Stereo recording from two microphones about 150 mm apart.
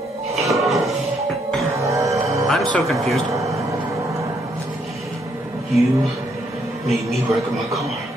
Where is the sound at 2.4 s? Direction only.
5° left (ahead or behind).